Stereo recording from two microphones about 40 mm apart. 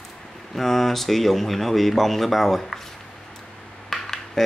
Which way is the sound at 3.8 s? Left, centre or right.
Centre.